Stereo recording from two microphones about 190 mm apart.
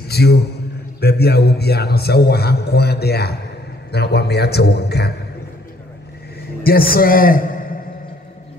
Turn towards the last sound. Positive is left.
turn(degrees=45)  # may be behind; listen again after turning